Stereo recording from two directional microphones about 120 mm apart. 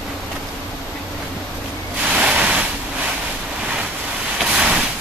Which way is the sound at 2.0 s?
10° right (ahead or behind).